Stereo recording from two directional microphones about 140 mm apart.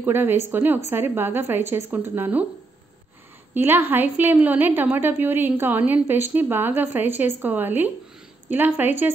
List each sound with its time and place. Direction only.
0.0 s a woman's voice: 15° right (ahead or behind)
3.5 s a woman's voice: 15° right (ahead or behind)